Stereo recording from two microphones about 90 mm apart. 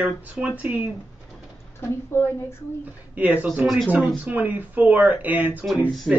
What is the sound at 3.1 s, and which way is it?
Speech, 20° right (ahead or behind).